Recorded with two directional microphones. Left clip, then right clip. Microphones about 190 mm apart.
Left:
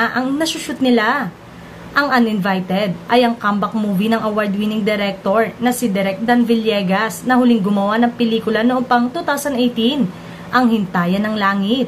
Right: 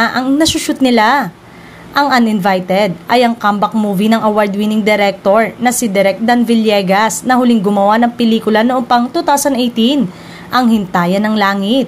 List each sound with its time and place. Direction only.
0.0 s a woman's voice: 45° right (ahead or behind)